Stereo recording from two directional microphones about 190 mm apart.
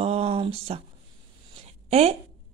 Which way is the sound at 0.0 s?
30° right (ahead or behind).